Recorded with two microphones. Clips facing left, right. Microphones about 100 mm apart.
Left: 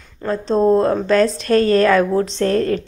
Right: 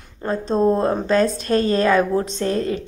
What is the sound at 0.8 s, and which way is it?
A woman's voice, 25° right (ahead or behind).